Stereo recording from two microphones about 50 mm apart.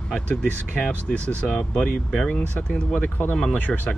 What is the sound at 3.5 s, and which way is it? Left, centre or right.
Speech, left.